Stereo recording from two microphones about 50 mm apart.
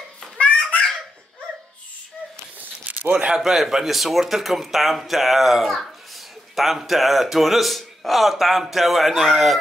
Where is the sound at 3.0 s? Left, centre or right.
Right.